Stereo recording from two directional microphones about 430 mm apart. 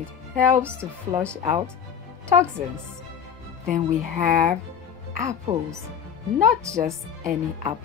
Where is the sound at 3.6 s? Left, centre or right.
Centre.